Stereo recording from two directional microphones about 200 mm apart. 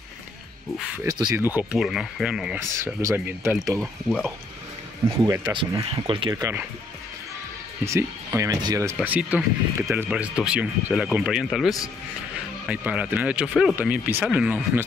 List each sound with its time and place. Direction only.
1.0 s speech: 20° right (ahead or behind)
1.4 s speech: 10° right (ahead or behind)
2.7 s speech: 15° right (ahead or behind)
3.7 s speech: centre (ahead or behind)
5.2 s speech: 20° right (ahead or behind)
6.3 s speech: 10° right (ahead or behind)
7.8 s speech: 15° right (ahead or behind)